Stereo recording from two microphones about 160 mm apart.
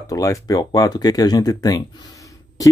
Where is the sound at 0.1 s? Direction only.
20° left (ahead or behind).